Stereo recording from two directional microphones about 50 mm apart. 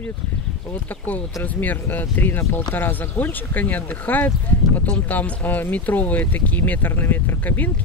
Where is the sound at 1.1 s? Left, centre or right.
Left.